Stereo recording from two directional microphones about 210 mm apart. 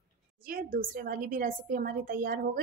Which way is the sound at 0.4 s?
45° right (ahead or behind).